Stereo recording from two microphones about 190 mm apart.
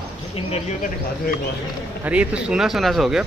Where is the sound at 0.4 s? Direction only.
30° left (ahead or behind).